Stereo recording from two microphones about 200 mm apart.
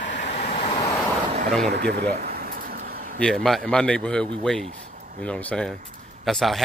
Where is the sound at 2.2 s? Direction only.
50° right (ahead or behind).